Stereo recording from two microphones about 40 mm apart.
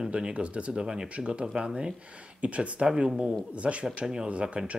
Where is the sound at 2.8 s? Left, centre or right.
Centre.